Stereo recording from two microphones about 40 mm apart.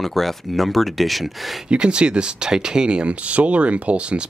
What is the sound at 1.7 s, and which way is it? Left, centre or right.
Speech, right.